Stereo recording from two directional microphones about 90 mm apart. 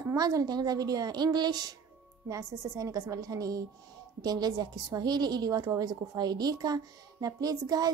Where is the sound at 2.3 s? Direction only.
35° right (ahead or behind).